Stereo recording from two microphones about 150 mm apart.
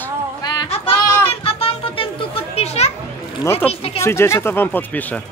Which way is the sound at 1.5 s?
40° left (ahead or behind).